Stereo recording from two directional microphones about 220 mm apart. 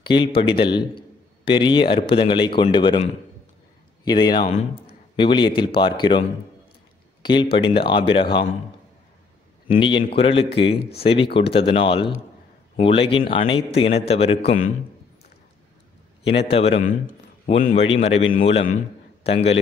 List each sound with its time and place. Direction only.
0.0 s a man's voice: 20° left (ahead or behind)
7.2 s a man's voice: 20° left (ahead or behind)
9.7 s a man's voice: 20° left (ahead or behind)
16.3 s a man's voice: 25° left (ahead or behind)